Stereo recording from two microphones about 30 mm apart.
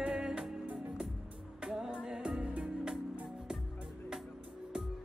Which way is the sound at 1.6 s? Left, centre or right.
Right.